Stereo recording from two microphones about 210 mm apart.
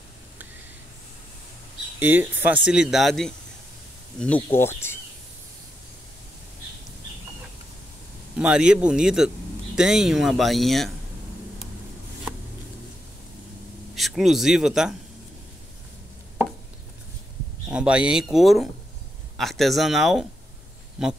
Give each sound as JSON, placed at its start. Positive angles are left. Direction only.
{"t": 2.0, "sound": "speech", "side_deg": -10}
{"t": 4.6, "sound": "a sound", "side_deg": 10}
{"t": 8.4, "sound": "speech", "side_deg": -5}
{"t": 13.9, "sound": "speech", "side_deg": 0}
{"t": 17.6, "sound": "speech", "side_deg": -5}